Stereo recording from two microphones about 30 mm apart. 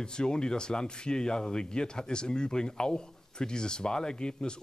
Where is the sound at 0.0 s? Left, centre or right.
Left.